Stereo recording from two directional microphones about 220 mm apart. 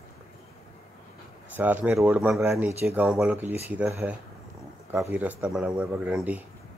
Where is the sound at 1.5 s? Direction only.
5° right (ahead or behind).